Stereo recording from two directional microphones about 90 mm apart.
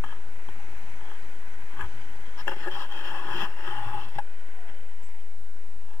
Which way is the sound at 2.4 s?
30° left (ahead or behind).